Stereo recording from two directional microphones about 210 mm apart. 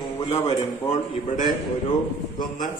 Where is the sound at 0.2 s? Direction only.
25° left (ahead or behind).